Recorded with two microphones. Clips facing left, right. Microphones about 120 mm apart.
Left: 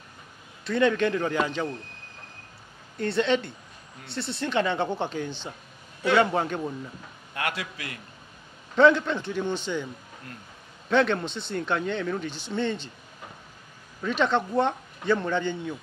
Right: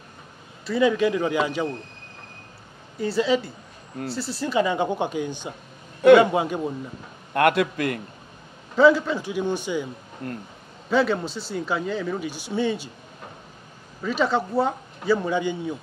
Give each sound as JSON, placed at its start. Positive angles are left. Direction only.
{"t": 0.7, "sound": "speech", "side_deg": -5}
{"t": 3.0, "sound": "a man's voice", "side_deg": -5}
{"t": 7.3, "sound": "a man's voice", "side_deg": -55}
{"t": 8.7, "sound": "speech", "side_deg": -5}
{"t": 10.9, "sound": "a man's voice", "side_deg": -5}
{"t": 14.0, "sound": "a man's voice", "side_deg": -5}